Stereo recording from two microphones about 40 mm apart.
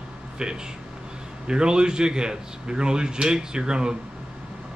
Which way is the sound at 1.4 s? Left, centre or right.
Right.